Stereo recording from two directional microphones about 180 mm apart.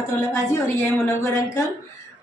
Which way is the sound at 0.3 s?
15° left (ahead or behind).